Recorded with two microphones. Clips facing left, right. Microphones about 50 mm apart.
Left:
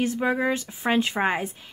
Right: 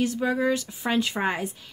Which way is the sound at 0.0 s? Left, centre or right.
Left.